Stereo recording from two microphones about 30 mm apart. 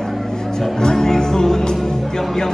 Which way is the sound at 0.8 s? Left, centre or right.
Centre.